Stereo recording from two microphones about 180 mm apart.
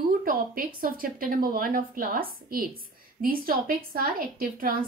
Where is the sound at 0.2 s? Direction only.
50° right (ahead or behind).